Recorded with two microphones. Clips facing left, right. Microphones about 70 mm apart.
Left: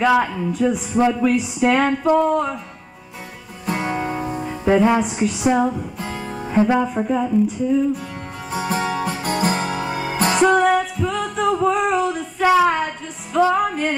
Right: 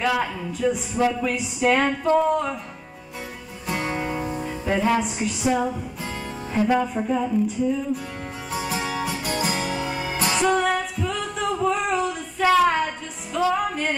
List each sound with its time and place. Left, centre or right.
0.2 s music: centre
3.7 s music: left
5.0 s music: centre
5.4 s music: left
5.9 s music: centre
6.4 s speech: centre
6.9 s music: centre
8.5 s music: left
10.5 s music: centre